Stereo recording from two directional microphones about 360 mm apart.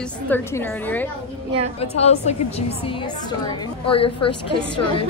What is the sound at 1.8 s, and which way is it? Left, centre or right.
A woman's voice, centre.